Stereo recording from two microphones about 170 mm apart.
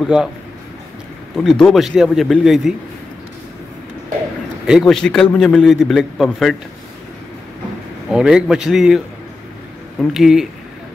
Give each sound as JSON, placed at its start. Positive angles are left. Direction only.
{"t": 0.0, "sound": "a man's voice", "side_deg": -5}
{"t": 1.3, "sound": "a man's voice", "side_deg": 0}
{"t": 4.6, "sound": "a man's voice", "side_deg": 0}
{"t": 8.1, "sound": "a man's voice", "side_deg": -5}